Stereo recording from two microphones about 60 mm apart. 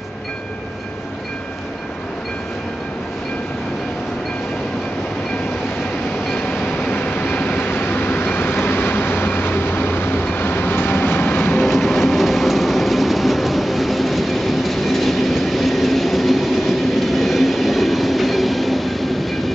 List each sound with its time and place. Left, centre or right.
6.3 s train: left
11.6 s train: centre